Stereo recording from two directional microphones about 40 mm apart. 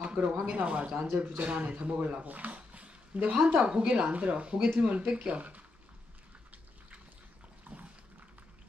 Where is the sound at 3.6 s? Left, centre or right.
Right.